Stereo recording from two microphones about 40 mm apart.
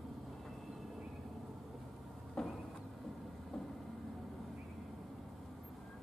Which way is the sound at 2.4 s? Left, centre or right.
Centre.